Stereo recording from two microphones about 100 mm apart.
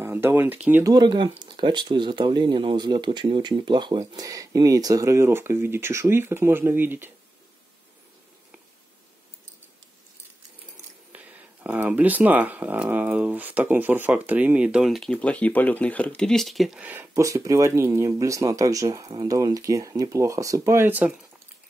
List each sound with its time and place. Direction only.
0.0 s speech: 25° right (ahead or behind)
0.8 s speech: 45° right (ahead or behind)
4.3 s speech: 35° right (ahead or behind); by 7.1 s 20° right (ahead or behind)
11.1 s speech: 15° right (ahead or behind)
15.1 s speech: 15° left (ahead or behind)
16.8 s speech: 20° right (ahead or behind)
17.1 s speech: 30° right (ahead or behind)